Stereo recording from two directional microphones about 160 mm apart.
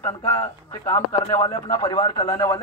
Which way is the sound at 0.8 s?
15° left (ahead or behind).